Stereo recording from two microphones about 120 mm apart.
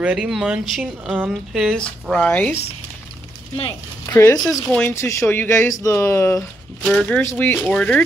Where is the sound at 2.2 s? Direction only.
10° left (ahead or behind).